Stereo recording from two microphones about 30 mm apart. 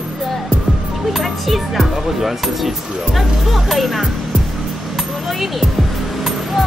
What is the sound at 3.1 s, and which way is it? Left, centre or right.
Speech, centre.